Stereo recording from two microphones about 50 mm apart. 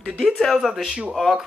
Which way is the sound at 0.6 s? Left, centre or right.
Centre.